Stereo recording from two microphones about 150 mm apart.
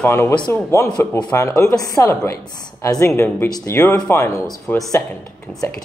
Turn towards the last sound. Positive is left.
turn(degrees=15)  # may be behind; listen again after turning